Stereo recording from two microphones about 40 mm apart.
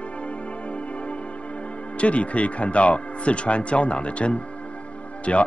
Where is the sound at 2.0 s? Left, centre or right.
Left.